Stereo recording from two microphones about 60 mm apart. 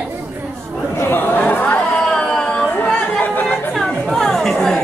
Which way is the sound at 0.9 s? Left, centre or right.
Left.